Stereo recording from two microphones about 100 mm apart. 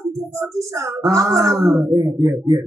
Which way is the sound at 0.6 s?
35° right (ahead or behind).